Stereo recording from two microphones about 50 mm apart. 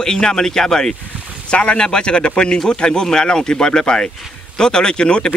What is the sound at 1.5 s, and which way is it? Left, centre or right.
Speech, left.